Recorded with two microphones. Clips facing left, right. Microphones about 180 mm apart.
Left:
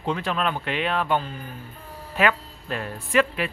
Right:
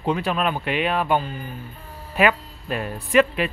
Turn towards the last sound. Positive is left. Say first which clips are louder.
# right 4 dB
turn(degrees=-20)  # may be behind; listen again after turning